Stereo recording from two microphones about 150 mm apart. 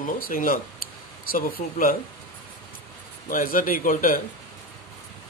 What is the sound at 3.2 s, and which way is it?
Speech, 70° left (ahead or behind).